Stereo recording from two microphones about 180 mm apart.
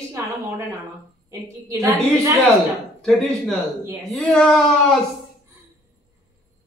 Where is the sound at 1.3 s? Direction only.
15° right (ahead or behind).